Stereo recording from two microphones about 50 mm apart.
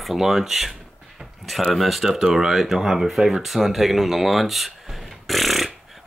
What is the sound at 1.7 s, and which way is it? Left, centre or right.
Speech, centre.